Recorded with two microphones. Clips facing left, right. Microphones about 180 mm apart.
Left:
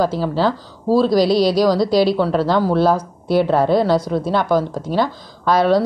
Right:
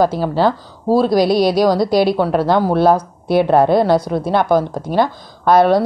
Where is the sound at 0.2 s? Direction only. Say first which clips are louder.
Right 3 dB; 55° right (ahead or behind).